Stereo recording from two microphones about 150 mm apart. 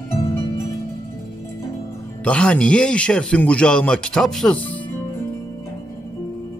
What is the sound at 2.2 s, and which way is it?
Speech, 10° left (ahead or behind).